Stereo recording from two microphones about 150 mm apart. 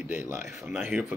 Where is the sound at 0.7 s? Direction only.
5° right (ahead or behind).